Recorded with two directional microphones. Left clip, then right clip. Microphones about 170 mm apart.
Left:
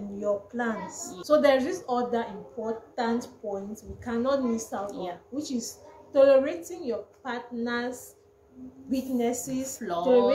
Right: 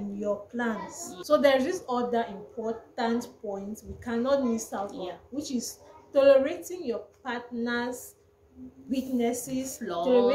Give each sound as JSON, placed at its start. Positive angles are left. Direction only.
{"t": 0.2, "sound": "a woman's voice", "side_deg": -15}
{"t": 4.8, "sound": "a woman's voice", "side_deg": 15}
{"t": 5.3, "sound": "a woman's voice", "side_deg": -15}
{"t": 9.8, "sound": "a woman's voice", "side_deg": 15}
{"t": 10.0, "sound": "a woman's voice", "side_deg": -15}